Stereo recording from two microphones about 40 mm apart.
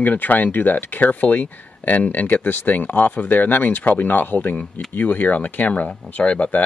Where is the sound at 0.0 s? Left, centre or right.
Left.